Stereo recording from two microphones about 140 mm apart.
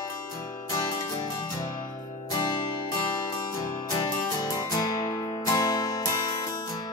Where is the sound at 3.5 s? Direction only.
20° left (ahead or behind).